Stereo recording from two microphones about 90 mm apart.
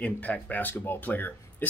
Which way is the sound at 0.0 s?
15° left (ahead or behind).